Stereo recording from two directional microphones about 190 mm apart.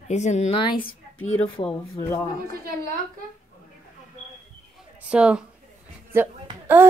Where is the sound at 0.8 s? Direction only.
90° left.